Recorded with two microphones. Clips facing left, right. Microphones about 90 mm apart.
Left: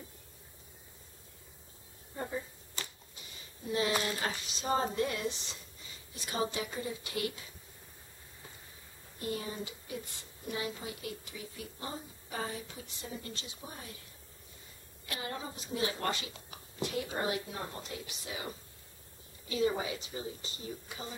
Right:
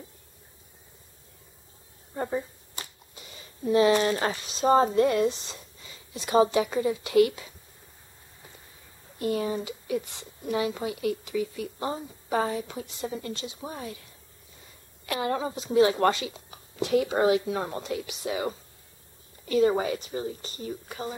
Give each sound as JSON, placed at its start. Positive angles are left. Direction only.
{"t": 4.0, "sound": "a woman's voice", "side_deg": -50}
{"t": 6.1, "sound": "speech", "side_deg": -90}
{"t": 9.2, "sound": "speech", "side_deg": -75}
{"t": 15.0, "sound": "speech", "side_deg": -90}
{"t": 19.4, "sound": "a woman's voice", "side_deg": -50}